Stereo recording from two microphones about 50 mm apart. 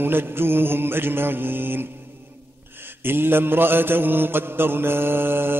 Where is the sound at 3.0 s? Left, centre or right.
Right.